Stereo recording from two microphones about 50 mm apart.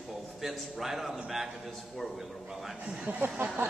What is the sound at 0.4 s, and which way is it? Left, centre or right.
A man's voice, centre.